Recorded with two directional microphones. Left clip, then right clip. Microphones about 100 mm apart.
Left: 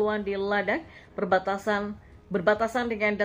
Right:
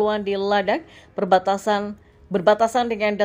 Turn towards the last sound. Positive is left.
turn(degrees=-45)  # may be behind; listen again after turning